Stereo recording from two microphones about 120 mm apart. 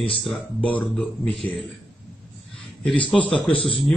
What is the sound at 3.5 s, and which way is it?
Speech, 45° left (ahead or behind).